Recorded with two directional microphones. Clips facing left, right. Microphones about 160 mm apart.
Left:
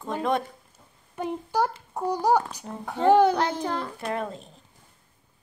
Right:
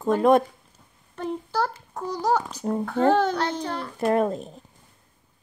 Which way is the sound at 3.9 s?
50° right (ahead or behind).